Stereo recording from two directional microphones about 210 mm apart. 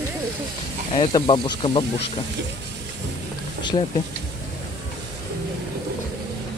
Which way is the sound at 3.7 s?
25° left (ahead or behind).